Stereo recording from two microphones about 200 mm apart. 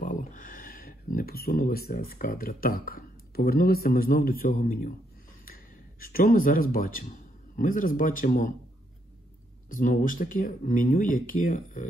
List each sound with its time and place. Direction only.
0.0 s speech: 40° left (ahead or behind)
9.7 s speech: 40° left (ahead or behind)